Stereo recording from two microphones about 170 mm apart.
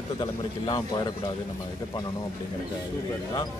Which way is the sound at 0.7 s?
25° left (ahead or behind).